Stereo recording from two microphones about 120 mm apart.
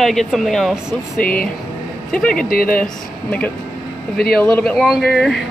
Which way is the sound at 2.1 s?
10° left (ahead or behind).